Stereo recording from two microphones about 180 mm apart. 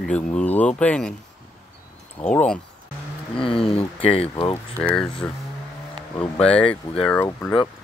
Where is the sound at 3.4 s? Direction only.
30° left (ahead or behind).